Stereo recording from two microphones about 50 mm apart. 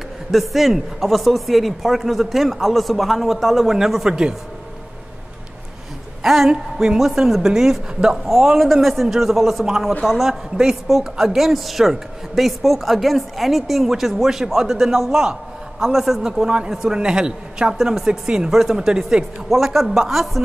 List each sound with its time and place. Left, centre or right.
0.3 s a woman's voice: centre
6.2 s a woman's voice: centre